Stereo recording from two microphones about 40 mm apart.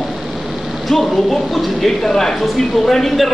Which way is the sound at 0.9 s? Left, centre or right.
Centre.